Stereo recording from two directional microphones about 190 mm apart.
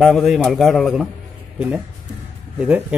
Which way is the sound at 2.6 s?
5° right (ahead or behind).